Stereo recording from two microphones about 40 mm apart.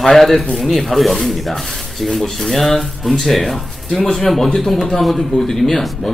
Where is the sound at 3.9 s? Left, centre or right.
Centre.